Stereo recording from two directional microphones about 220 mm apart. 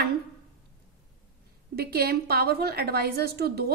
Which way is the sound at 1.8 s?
45° right (ahead or behind).